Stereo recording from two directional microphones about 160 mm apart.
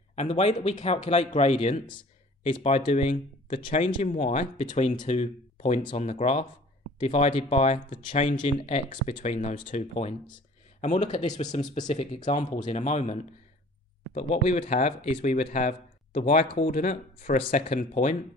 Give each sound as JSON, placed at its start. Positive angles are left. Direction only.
{"t": 0.1, "sound": "speech", "side_deg": 40}